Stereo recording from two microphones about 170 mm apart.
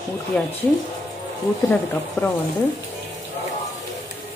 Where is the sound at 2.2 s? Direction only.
15° left (ahead or behind).